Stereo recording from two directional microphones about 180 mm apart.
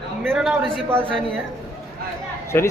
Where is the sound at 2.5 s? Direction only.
10° left (ahead or behind).